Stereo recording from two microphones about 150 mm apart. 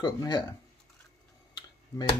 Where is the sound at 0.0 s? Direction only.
30° left (ahead or behind).